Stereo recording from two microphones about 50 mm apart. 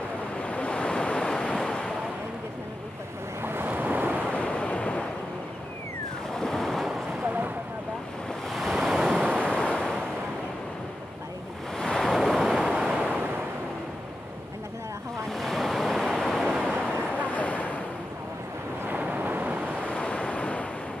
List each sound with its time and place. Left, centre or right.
0.4 s waves: left
3.4 s waves: right
4.3 s waves: left
6.3 s waves: centre
8.5 s waves: centre
8.7 s waves: centre
9.5 s waves: centre
11.8 s waves: centre
15.2 s waves: centre
17.3 s vehicle: left
18.9 s waves: right
19.9 s waves: centre